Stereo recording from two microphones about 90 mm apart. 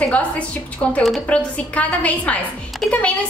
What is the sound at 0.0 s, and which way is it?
A woman's voice, 15° left (ahead or behind).